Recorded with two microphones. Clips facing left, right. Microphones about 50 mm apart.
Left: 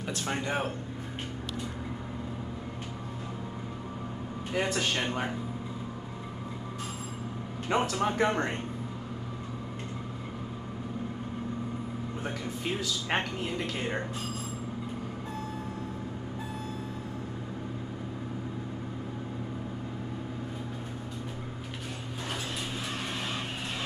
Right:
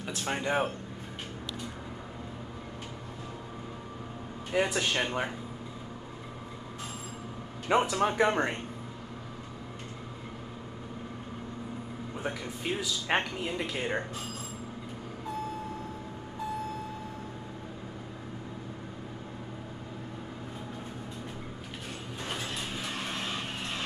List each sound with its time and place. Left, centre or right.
0.0 s speech: centre
4.5 s a man's voice: centre
7.6 s speech: centre
12.2 s speech: centre